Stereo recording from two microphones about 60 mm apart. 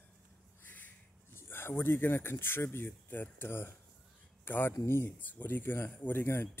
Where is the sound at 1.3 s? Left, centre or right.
Left.